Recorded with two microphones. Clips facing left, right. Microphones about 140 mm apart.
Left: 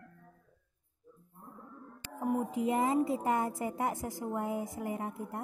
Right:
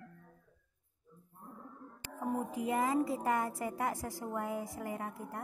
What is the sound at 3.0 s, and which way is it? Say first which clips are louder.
A woman's voice: left 2 dB; 20° left (ahead or behind).